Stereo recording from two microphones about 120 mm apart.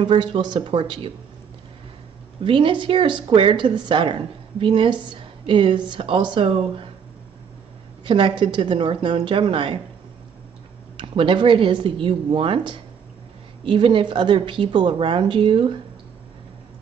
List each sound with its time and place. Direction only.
0.0 s a woman's voice: 45° right (ahead or behind)
2.4 s a woman's voice: 45° right (ahead or behind)
8.0 s a woman's voice: 45° right (ahead or behind)
11.0 s a woman's voice: 45° right (ahead or behind)